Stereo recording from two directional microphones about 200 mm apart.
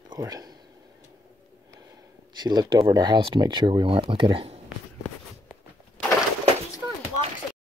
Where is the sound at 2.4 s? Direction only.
20° right (ahead or behind).